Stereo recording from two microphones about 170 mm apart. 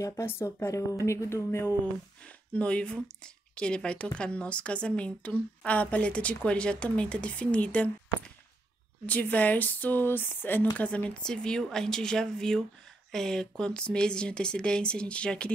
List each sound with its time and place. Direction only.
0.0 s speech: 15° left (ahead or behind)
9.0 s speech: 10° left (ahead or behind)